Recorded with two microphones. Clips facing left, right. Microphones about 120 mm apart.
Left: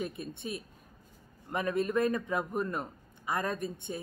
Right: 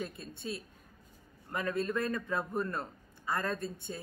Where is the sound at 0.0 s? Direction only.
20° left (ahead or behind).